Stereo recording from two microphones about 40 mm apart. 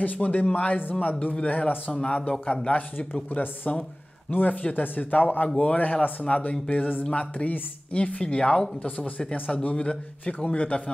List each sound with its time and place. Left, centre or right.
0.0 s a man's voice: left
3.3 s a man's voice: left
8.8 s speech: left
9.2 s a man's voice: left